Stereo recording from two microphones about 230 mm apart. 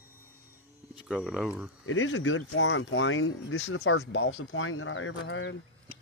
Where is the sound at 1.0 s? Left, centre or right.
Centre.